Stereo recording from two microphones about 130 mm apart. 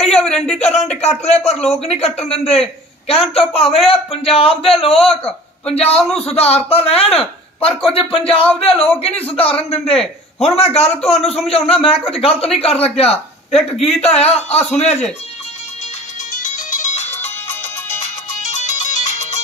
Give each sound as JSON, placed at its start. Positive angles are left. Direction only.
{"t": 0.2, "sound": "a sound", "side_deg": 5}
{"t": 0.6, "sound": "a man's voice", "side_deg": 55}
{"t": 16.3, "sound": "music", "side_deg": 85}
{"t": 18.4, "sound": "ringtone", "side_deg": 65}